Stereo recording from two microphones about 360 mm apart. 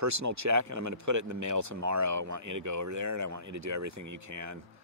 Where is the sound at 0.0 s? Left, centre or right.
Right.